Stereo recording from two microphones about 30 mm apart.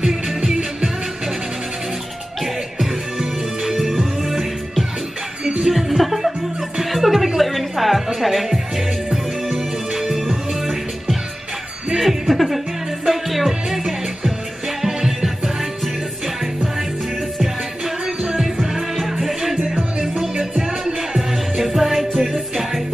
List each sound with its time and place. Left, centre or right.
0.0 s music: right
3.8 s music: centre
7.3 s a sound: centre
8.2 s music: centre
17.4 s music: centre
19.6 s music: right
21.6 s music: centre